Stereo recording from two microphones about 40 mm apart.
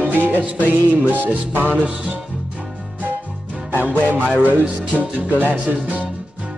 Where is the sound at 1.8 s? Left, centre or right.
Right.